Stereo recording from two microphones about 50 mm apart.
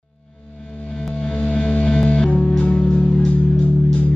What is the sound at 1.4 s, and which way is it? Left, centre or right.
Music, centre.